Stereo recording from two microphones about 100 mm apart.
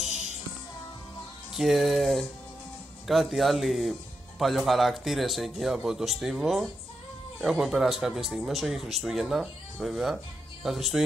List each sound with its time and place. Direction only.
1.5 s speech: centre (ahead or behind)